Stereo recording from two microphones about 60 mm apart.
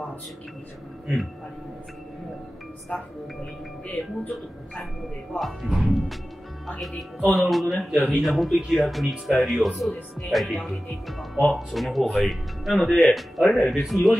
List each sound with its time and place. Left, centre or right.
2.9 s speech: centre
3.8 s speech: left
5.4 s speech: centre